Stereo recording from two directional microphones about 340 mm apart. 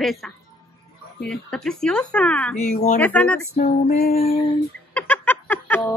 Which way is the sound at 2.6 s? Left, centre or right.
Left.